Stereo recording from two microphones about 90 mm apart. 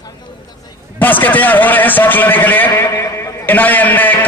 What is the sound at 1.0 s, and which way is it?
A man's voice, 20° left (ahead or behind).